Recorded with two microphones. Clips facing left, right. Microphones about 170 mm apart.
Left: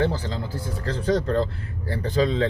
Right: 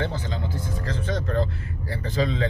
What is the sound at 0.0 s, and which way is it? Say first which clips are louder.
Speech: left 4 dB; 35° left (ahead or behind).